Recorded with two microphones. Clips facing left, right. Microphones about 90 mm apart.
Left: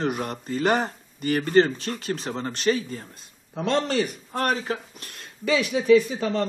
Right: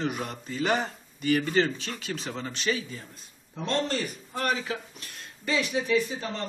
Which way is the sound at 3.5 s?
70° left (ahead or behind).